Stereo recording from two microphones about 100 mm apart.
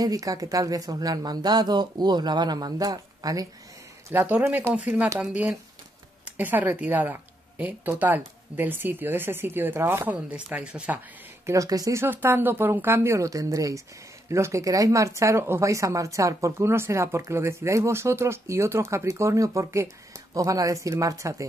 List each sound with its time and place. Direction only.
0.0 s speech: 40° right (ahead or behind)
4.3 s speech: 15° right (ahead or behind)
6.3 s speech: 20° right (ahead or behind)
10.1 s speech: 10° right (ahead or behind)
11.4 s speech: 35° right (ahead or behind)
12.0 s speech: 20° right (ahead or behind)